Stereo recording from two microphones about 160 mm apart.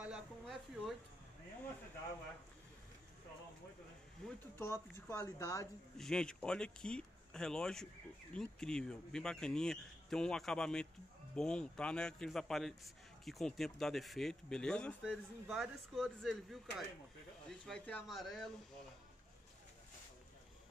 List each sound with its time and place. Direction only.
0.0 s a sound: 5° right (ahead or behind)
4.6 s speech: 15° left (ahead or behind)
5.9 s speech: 5° left (ahead or behind)